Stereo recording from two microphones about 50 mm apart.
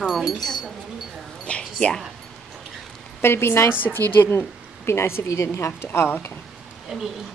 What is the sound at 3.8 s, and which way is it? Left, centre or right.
Speech, left.